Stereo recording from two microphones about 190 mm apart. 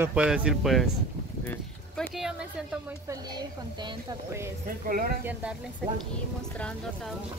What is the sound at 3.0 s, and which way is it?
A woman's voice, 20° right (ahead or behind).